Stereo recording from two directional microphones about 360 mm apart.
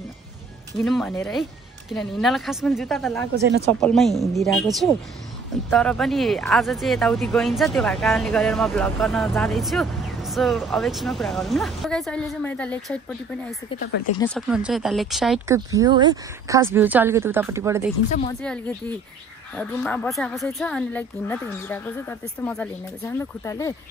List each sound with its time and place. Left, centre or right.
0.8 s speech: centre
3.3 s speech: right
3.8 s speech: centre
13.7 s speech: left
14.2 s speech: centre
18.4 s speech: centre